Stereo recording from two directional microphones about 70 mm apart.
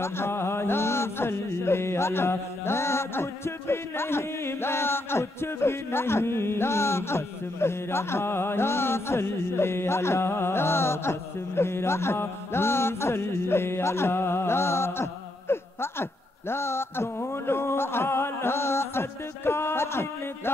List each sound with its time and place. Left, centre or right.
0.0 s music: left